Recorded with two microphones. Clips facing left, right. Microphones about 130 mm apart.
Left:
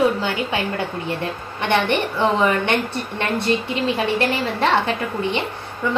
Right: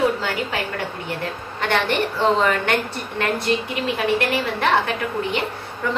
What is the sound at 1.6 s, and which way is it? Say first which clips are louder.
A woman's voice: left 2 dB; 20° left (ahead or behind).